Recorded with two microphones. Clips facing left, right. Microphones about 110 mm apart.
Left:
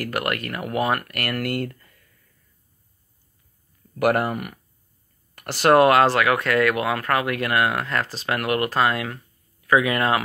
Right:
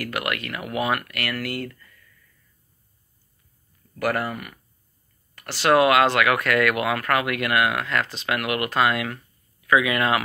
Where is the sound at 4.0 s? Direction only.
55° left (ahead or behind).